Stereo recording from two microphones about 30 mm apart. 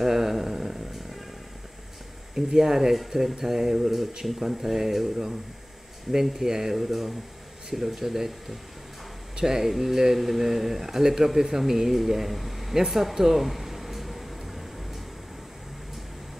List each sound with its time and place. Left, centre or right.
0.0 s a sound: centre
2.3 s speech: centre
6.8 s speech: centre
12.7 s air conditioning: centre